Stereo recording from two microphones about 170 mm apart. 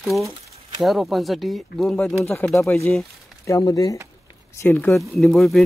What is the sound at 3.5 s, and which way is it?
Speech, 20° left (ahead or behind).